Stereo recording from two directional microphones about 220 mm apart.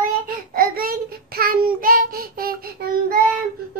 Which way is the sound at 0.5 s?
40° right (ahead or behind).